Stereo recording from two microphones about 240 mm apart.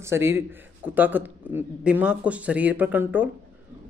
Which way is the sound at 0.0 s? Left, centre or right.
Centre.